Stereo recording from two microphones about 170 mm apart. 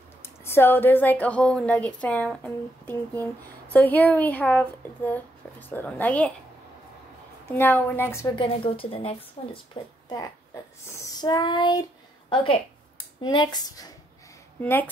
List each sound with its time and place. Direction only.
0.2 s a woman's voice: 15° left (ahead or behind)
7.4 s a woman's voice: 10° left (ahead or behind)
8.4 s a woman's voice: 35° left (ahead or behind)
10.0 s child singing: 20° left (ahead or behind)
12.3 s speech: 30° left (ahead or behind)
14.6 s a woman's voice: 10° left (ahead or behind)